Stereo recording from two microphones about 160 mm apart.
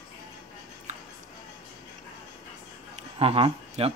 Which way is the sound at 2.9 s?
40° right (ahead or behind).